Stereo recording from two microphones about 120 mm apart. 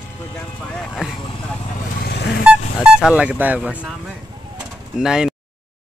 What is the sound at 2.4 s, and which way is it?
Speech, 10° right (ahead or behind).